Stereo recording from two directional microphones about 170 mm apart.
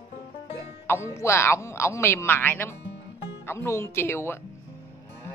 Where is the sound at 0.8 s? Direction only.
15° left (ahead or behind).